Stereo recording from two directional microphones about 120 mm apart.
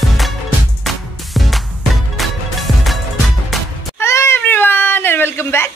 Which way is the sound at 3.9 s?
20° left (ahead or behind).